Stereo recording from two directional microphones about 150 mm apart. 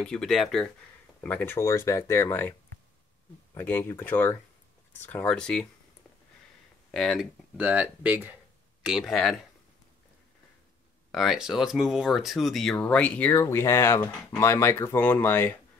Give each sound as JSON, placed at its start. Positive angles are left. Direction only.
{"t": 0.0, "sound": "speech", "side_deg": 5}
{"t": 1.2, "sound": "speech", "side_deg": 15}
{"t": 3.5, "sound": "speech", "side_deg": 15}
{"t": 6.9, "sound": "speech", "side_deg": 0}
{"t": 11.1, "sound": "speech", "side_deg": 0}